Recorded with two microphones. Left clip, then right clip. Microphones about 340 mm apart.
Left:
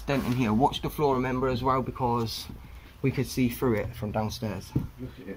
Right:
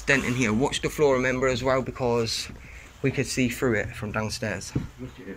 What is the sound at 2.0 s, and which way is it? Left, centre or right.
Speech, centre.